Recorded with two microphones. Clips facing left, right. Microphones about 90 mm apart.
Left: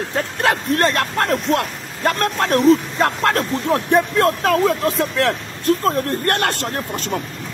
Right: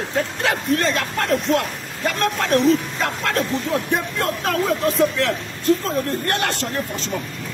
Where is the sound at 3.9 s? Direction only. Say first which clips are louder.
Left 7 dB; 90° left.